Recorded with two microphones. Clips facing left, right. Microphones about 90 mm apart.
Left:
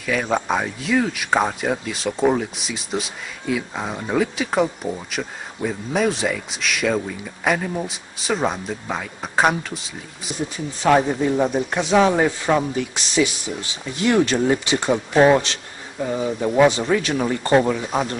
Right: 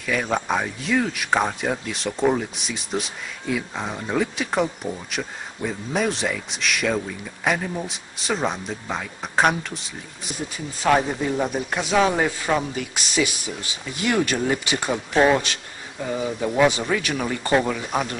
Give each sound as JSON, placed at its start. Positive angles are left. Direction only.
{"t": 0.0, "sound": "speech", "side_deg": 0}
{"t": 10.8, "sound": "speech", "side_deg": 15}
{"t": 15.1, "sound": "speech", "side_deg": 15}